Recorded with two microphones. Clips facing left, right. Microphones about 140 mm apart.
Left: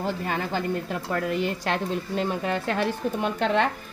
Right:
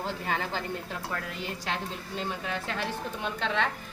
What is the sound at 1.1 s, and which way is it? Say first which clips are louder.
A woman's voice: left 13 dB; 60° left (ahead or behind).